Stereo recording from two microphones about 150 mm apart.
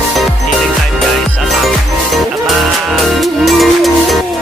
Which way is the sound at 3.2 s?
Centre (ahead or behind).